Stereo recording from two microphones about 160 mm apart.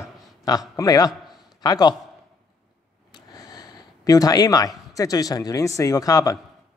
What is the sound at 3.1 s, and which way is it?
Speech, 25° left (ahead or behind).